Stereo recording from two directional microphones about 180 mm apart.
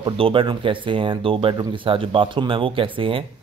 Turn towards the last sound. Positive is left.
turn(degrees=-30)  # may be behind; listen again after turning